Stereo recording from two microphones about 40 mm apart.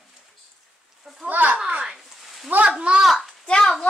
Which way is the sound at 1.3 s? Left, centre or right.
Right.